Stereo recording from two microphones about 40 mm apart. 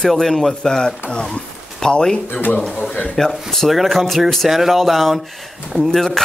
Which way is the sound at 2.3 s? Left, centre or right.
Left.